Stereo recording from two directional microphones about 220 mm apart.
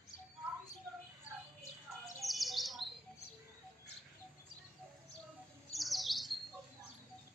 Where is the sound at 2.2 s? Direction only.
Centre (ahead or behind).